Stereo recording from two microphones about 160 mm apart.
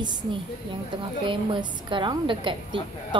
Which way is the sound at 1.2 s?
30° right (ahead or behind).